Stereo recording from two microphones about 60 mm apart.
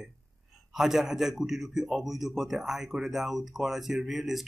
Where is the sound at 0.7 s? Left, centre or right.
Centre.